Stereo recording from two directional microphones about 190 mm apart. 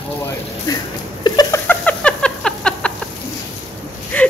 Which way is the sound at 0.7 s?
20° left (ahead or behind).